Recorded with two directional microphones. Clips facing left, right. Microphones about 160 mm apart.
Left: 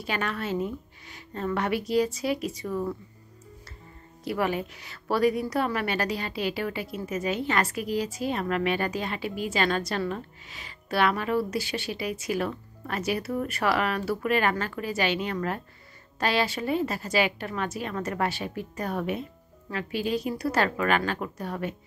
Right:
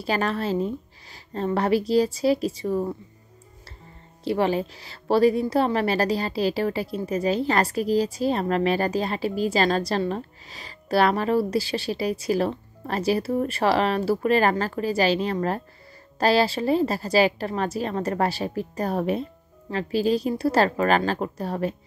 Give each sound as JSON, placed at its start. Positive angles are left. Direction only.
{"t": 0.0, "sound": "a woman's voice", "side_deg": -35}
{"t": 4.2, "sound": "a woman's voice", "side_deg": -30}